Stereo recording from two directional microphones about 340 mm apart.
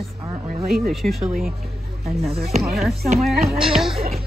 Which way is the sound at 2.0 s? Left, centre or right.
Centre.